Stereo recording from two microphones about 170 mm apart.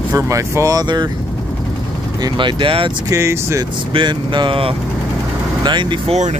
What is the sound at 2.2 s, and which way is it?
Speech, 25° right (ahead or behind).